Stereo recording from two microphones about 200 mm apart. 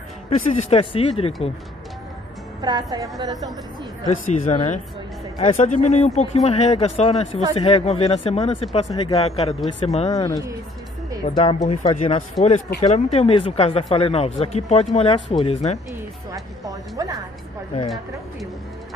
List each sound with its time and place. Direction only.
0.3 s speech: 35° left (ahead or behind)
2.6 s a woman's voice: 20° right (ahead or behind)
4.0 s speech: 35° left (ahead or behind)
15.9 s speech: 15° right (ahead or behind)